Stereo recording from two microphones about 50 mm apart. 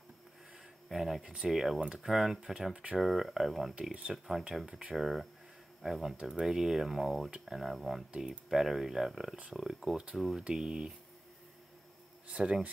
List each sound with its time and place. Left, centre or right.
0.8 s speech: centre
1.2 s speech: right
1.5 s speech: centre
2.7 s speech: centre
3.0 s speech: centre
4.9 s speech: centre
12.3 s speech: right